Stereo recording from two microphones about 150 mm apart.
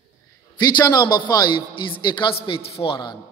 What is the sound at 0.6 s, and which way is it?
A man's voice, 25° left (ahead or behind).